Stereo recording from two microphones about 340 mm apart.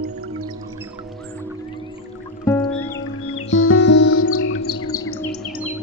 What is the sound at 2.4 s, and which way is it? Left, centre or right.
Music, centre.